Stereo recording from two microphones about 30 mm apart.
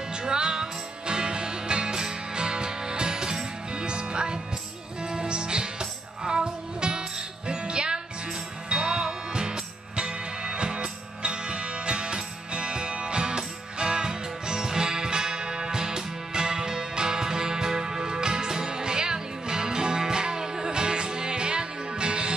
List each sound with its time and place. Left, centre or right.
0.2 s music: right